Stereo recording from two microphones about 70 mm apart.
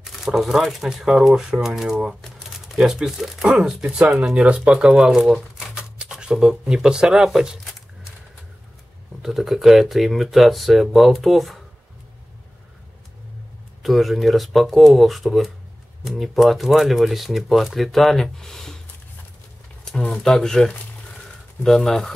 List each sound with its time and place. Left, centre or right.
0.0 s speech: centre
9.2 s speech: centre
13.8 s speech: centre
19.8 s speech: centre